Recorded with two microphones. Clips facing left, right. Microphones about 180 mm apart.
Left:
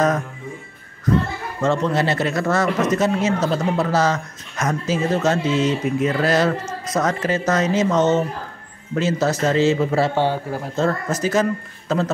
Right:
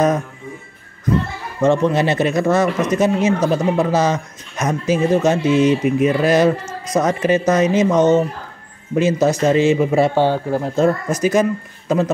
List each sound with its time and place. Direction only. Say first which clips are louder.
1.6 s speech: right 4 dB; 15° right (ahead or behind)